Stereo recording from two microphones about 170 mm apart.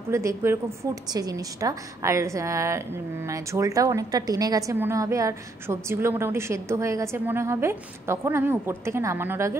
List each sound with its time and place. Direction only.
0.1 s a woman's voice: 15° right (ahead or behind)